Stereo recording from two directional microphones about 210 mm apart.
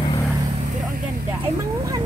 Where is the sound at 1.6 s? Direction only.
15° right (ahead or behind).